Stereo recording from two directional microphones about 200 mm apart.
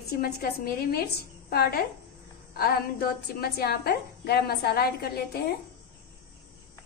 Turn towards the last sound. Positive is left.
turn(degrees=50)  # may be behind; listen again after turning